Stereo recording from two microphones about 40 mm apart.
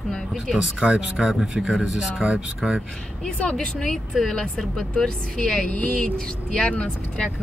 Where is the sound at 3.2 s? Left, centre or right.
Left.